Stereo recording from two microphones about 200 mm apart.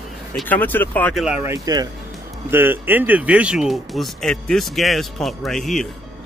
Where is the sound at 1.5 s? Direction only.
20° right (ahead or behind).